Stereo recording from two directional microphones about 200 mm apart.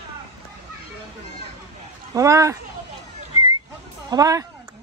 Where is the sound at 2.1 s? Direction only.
15° right (ahead or behind).